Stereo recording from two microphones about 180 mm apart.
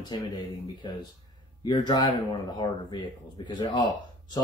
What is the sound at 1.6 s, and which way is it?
Speech, 25° left (ahead or behind).